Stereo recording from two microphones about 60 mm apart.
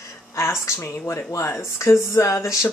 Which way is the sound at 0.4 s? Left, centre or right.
Left.